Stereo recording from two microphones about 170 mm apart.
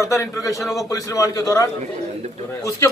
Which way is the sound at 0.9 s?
20° left (ahead or behind).